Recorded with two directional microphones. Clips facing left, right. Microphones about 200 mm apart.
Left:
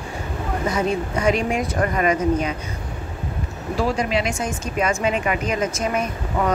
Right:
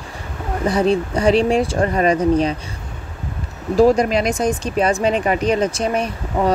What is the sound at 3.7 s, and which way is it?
Speech, 40° right (ahead or behind).